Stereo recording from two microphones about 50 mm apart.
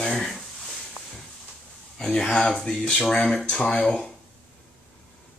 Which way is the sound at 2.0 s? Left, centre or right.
Centre.